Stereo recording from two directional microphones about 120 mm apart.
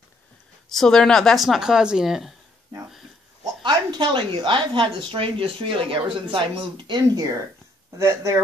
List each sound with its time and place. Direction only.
0.7 s speech: 5° left (ahead or behind)
3.6 s a woman's voice: 40° right (ahead or behind)
7.2 s speech: 30° right (ahead or behind)